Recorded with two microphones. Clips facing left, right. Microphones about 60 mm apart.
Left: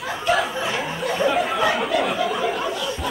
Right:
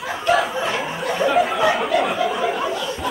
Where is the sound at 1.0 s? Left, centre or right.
Centre.